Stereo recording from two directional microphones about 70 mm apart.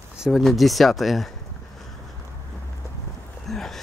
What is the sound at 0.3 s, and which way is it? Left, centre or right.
Speech, centre.